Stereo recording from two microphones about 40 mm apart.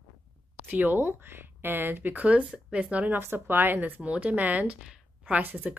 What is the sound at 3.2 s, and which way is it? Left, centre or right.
Speech, right.